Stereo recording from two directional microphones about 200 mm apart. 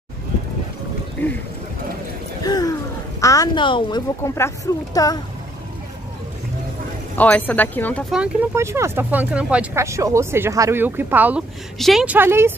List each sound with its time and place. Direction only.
1.2 s speech: 10° left (ahead or behind)
2.4 s a sound: 20° left (ahead or behind)
3.2 s a woman's voice: 15° left (ahead or behind)
7.2 s speech: 10° left (ahead or behind)
8.1 s speech: 10° right (ahead or behind)